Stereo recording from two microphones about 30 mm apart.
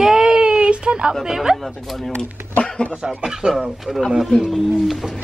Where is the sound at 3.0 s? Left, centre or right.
Right.